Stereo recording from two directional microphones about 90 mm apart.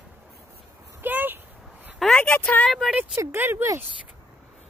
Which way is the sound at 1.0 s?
20° right (ahead or behind).